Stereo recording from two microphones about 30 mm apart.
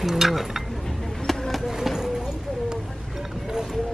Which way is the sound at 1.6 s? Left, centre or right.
Centre.